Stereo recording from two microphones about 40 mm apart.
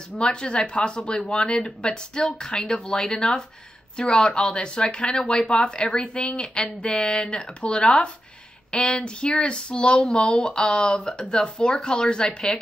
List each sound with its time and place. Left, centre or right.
0.2 s speech: left
9.9 s speech: centre
10.2 s speech: left